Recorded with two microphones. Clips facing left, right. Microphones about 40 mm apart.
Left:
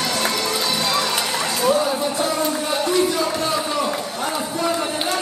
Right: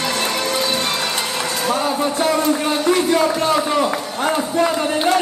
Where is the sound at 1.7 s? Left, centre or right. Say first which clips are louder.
Even; right.